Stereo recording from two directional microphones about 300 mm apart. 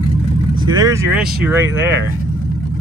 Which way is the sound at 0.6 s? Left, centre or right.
Centre.